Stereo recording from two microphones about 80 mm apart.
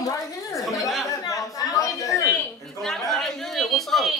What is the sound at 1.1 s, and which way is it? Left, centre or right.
A woman's voice, left.